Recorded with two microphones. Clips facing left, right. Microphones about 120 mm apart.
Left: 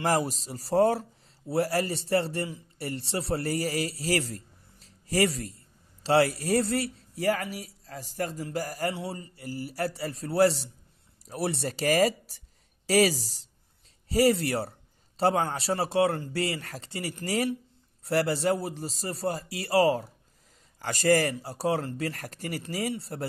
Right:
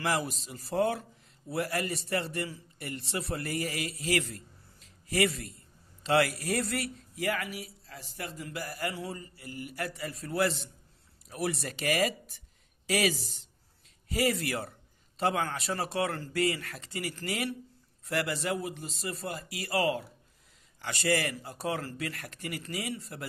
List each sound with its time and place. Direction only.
0.0 s a man's voice: 40° left (ahead or behind)